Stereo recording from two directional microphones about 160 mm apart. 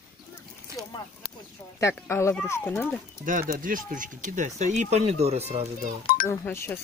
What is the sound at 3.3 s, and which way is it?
Speech, 55° right (ahead or behind).